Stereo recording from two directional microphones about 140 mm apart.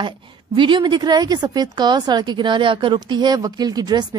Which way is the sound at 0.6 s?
35° right (ahead or behind).